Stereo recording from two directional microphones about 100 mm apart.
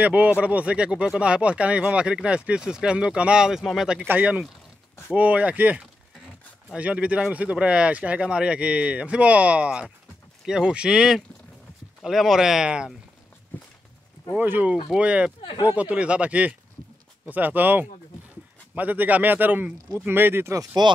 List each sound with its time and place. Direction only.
0.0 s speech: 15° right (ahead or behind)
14.3 s speech: 15° right (ahead or behind)